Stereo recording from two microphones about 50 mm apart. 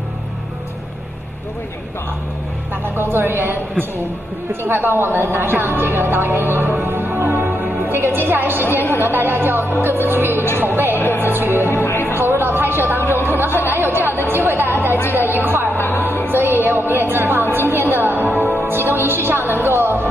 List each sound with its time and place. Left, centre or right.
3.0 s a woman's voice: right
8.6 s a woman's voice: left
9.0 s speech: right
10.6 s music: right
11.0 s music: left
11.2 s speech: right
11.7 s music: left
12.2 s a sound: right
13.2 s chatter: right
15.1 s a sound: right
15.7 s music: left
16.3 s music: right